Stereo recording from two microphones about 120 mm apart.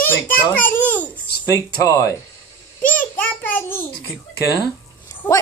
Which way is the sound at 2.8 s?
15° left (ahead or behind).